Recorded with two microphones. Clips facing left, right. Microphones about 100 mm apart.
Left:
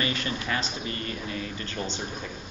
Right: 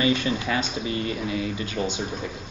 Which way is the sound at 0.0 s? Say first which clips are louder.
Right 7 dB; 20° right (ahead or behind).